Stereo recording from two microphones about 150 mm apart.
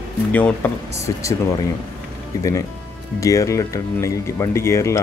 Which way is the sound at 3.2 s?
20° left (ahead or behind).